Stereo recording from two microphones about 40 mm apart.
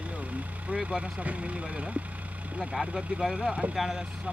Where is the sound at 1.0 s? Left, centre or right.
Right.